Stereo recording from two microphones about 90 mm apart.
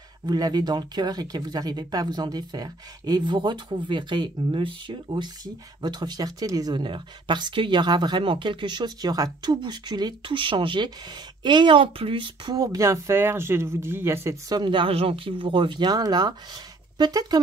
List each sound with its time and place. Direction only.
0.3 s speech: 50° right (ahead or behind); by 4.9 s 70° right (ahead or behind)
5.1 s speech: 55° right (ahead or behind)
6.8 s speech: 60° right (ahead or behind)
12.4 s speech: 40° right (ahead or behind)
14.5 s speech: 65° right (ahead or behind); by 17.4 s 45° right (ahead or behind)